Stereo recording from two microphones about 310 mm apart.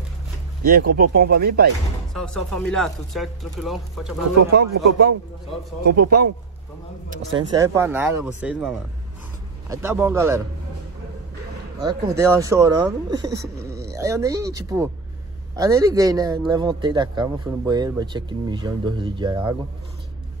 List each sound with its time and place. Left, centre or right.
0.7 s speech: right
2.1 s speech: centre
4.5 s speech: right
7.3 s a man's voice: centre
11.8 s a man's voice: centre